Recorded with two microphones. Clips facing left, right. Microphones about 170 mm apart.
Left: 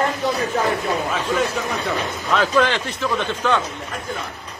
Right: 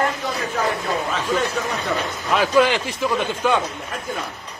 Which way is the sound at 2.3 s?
10° right (ahead or behind).